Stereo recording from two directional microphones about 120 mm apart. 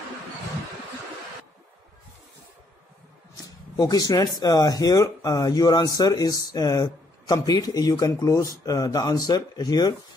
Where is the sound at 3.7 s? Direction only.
30° left (ahead or behind).